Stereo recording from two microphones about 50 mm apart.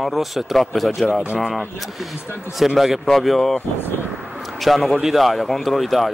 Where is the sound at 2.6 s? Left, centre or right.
Centre.